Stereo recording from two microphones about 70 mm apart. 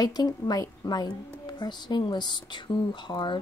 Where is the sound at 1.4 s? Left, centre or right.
Left.